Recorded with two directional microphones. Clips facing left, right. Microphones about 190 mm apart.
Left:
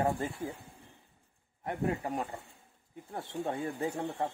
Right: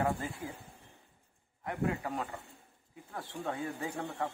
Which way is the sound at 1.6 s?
25° left (ahead or behind).